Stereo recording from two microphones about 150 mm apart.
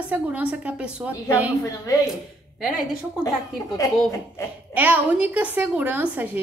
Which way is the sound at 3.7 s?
20° left (ahead or behind).